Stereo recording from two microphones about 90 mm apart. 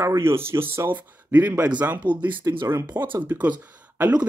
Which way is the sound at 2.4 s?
35° right (ahead or behind).